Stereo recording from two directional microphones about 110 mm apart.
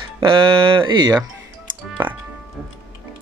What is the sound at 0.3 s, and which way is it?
Speech, 50° right (ahead or behind).